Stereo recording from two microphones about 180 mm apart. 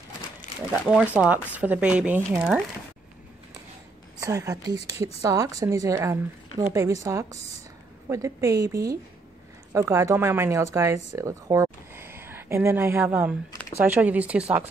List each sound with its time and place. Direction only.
0.7 s speech: 5° right (ahead or behind)
4.2 s a woman's voice: 15° right (ahead or behind)